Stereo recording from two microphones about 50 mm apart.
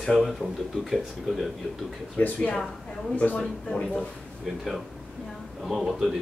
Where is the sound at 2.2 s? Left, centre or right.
Left.